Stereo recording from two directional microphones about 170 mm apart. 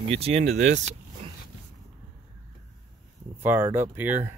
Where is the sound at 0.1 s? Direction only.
35° right (ahead or behind).